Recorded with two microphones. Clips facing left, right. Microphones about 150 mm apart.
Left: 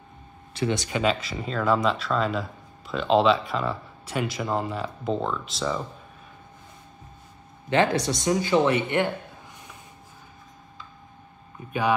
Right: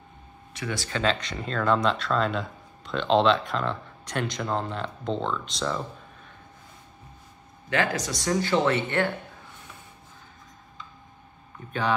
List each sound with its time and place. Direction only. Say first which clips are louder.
0.6 s speech: left 5 dB; 20° left (ahead or behind); by 5.8 s 5° left (ahead or behind)
7.7 s speech: left 5 dB; 25° left (ahead or behind)